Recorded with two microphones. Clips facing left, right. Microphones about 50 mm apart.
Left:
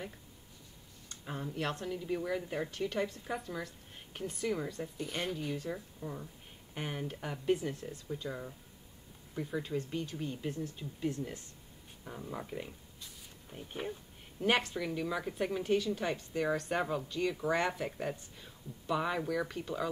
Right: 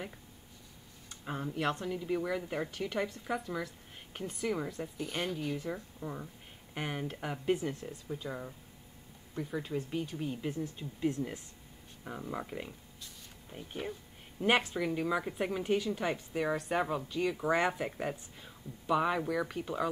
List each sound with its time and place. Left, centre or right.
1.0 s speech: centre
5.6 s speech: centre
7.1 s speech: right
7.5 s speech: centre
10.8 s speech: right
12.0 s speech: centre
14.4 s speech: centre